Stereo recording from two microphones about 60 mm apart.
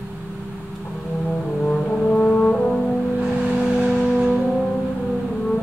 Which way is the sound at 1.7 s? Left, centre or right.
Centre.